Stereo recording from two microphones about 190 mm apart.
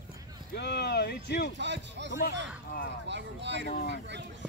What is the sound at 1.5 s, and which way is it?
Speech, 70° right (ahead or behind).